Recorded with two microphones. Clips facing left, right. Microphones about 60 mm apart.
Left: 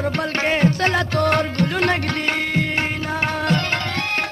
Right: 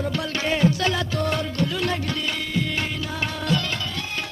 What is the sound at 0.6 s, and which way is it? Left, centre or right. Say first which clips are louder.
Music: left 1 dB; left.